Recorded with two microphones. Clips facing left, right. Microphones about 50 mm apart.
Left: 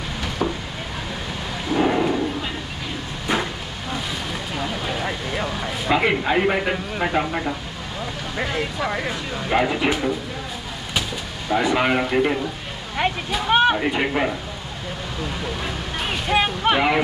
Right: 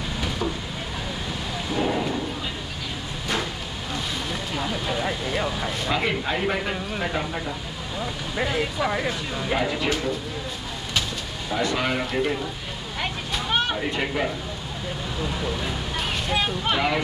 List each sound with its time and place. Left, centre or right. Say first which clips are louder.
1.7 s a sound: left 6 dB; left
4.8 s vehicle: even; centre
5.9 s speech: left 7 dB; left
8.4 s speech: even; centre
9.5 s speech: left 5 dB; left
11.5 s speech: left 5 dB; left
13.5 s speech: left 8 dB; left
16.3 s speech: left 7 dB; left